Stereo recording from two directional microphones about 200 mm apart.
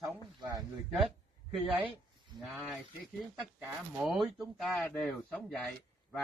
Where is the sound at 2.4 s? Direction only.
Centre (ahead or behind).